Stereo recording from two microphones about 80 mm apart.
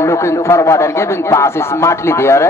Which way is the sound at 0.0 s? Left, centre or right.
Left.